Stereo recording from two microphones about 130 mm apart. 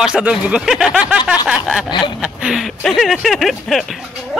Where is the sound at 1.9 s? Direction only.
35° left (ahead or behind).